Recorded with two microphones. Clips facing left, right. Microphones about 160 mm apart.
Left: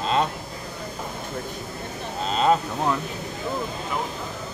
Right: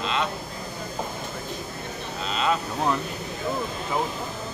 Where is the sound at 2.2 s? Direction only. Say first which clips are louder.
Left 5 dB; 40° left (ahead or behind).